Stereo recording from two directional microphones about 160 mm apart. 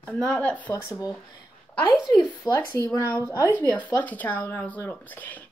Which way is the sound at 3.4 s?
10° right (ahead or behind).